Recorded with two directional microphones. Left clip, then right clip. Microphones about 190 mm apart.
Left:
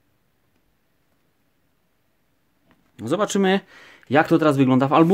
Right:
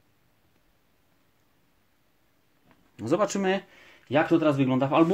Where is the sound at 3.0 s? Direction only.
30° left (ahead or behind).